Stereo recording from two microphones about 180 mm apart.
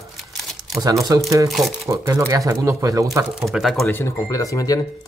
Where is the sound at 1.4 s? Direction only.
Centre (ahead or behind).